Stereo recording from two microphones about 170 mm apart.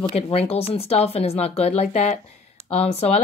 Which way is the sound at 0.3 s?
35° left (ahead or behind).